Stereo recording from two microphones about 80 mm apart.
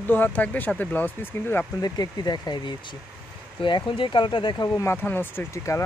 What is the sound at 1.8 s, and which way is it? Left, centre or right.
Speech, left.